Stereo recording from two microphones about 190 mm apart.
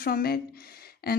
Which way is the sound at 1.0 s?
55° left (ahead or behind).